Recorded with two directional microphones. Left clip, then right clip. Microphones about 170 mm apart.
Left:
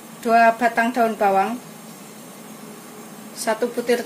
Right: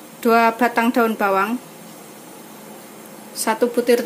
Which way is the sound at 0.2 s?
60° right (ahead or behind).